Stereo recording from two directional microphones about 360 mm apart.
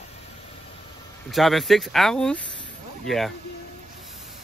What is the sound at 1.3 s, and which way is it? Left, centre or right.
Speech, centre.